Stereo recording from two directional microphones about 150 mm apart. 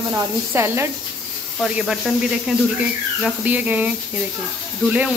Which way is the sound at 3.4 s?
10° right (ahead or behind).